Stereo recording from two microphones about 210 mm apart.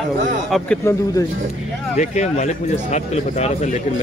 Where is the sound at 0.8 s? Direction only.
15° left (ahead or behind).